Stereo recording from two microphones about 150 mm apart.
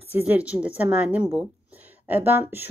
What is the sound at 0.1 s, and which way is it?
Speech, 10° right (ahead or behind).